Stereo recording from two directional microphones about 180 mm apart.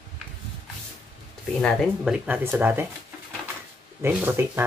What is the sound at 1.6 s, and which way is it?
Speech, 5° right (ahead or behind).